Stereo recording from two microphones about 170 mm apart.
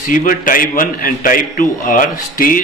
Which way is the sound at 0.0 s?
50° left (ahead or behind).